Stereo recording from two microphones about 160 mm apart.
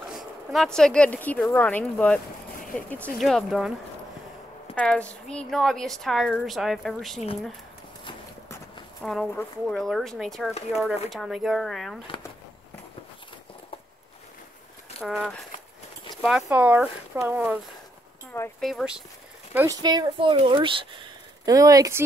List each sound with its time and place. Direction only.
0.5 s a woman's voice: centre (ahead or behind)
4.7 s a woman's voice: 10° left (ahead or behind)
9.0 s a woman's voice: centre (ahead or behind)
15.0 s a woman's voice: centre (ahead or behind)
18.6 s a woman's voice: centre (ahead or behind)
19.5 s speech: 20° right (ahead or behind)